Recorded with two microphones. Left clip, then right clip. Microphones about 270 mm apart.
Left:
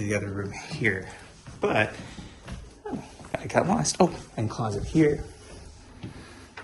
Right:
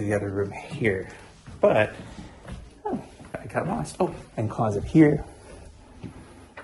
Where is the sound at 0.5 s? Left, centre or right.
Centre.